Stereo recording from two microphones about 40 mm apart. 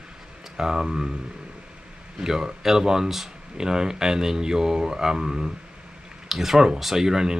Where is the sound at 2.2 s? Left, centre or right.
Centre.